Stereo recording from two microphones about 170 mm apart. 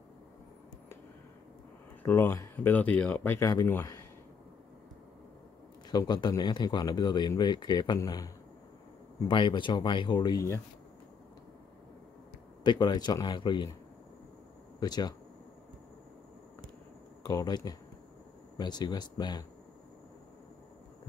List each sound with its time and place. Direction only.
2.0 s speech: 15° left (ahead or behind)
5.9 s speech: 25° left (ahead or behind)
9.3 s speech: 30° left (ahead or behind)
12.6 s speech: 25° left (ahead or behind)
14.8 s speech: 25° left (ahead or behind)
17.2 s speech: 20° left (ahead or behind)